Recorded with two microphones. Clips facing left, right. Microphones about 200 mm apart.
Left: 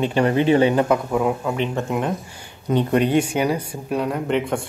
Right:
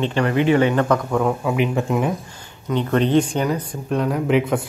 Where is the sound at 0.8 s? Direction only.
10° left (ahead or behind).